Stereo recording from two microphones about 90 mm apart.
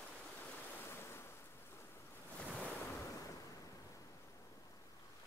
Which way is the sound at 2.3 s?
15° left (ahead or behind).